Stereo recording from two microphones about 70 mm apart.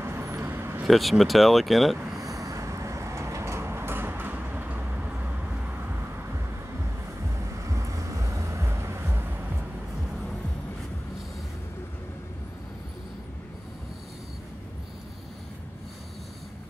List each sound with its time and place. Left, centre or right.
0.0 s vehicle: right
0.8 s speech: centre
2.2 s vehicle: right; by 5.3 s centre
7.6 s vehicle: right